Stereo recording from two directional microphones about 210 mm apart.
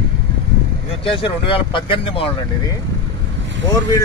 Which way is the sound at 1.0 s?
25° left (ahead or behind).